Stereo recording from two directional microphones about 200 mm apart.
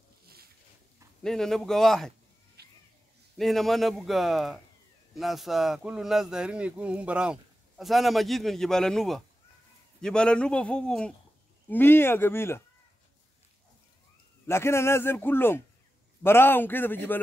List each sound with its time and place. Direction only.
1.2 s speech: centre (ahead or behind)
2.6 s cat: 55° right (ahead or behind)
3.3 s a man's voice: centre (ahead or behind)
14.5 s a man's voice: 15° left (ahead or behind)